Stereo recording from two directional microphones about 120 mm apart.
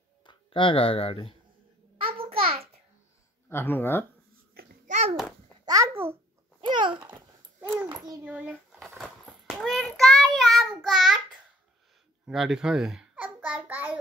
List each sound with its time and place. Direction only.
0.2 s speech: 40° left (ahead or behind)
2.0 s a sound: 50° right (ahead or behind)
3.4 s speech: 20° left (ahead or behind)
4.8 s babbling: 75° right (ahead or behind)
5.7 s babbling: 25° right (ahead or behind)
6.6 s babbling: 40° right (ahead or behind)
7.1 s a sound: 15° right (ahead or behind)
7.9 s a child's voice: 35° right (ahead or behind)
8.2 s a child's voice: 10° right (ahead or behind)
8.7 s a sound: centre (ahead or behind)
9.6 s child singing: 5° left (ahead or behind)
12.3 s babbling: 5° right (ahead or behind)